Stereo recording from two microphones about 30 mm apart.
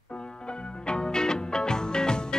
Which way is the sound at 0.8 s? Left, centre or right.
Left.